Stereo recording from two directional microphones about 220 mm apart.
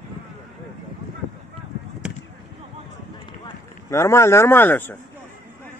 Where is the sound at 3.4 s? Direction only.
15° left (ahead or behind).